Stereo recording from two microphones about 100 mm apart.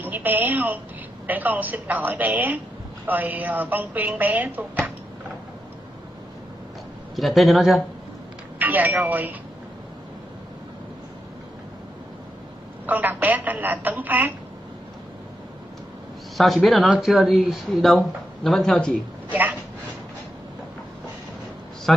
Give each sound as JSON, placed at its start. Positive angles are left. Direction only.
{"t": 0.0, "sound": "a woman's voice", "side_deg": -15}
{"t": 7.2, "sound": "speech", "side_deg": 0}
{"t": 8.5, "sound": "speech", "side_deg": -15}
{"t": 12.8, "sound": "a woman's voice", "side_deg": -15}
{"t": 16.3, "sound": "speech", "side_deg": 0}
{"t": 19.2, "sound": "a sound", "side_deg": -20}
{"t": 21.9, "sound": "speech", "side_deg": 5}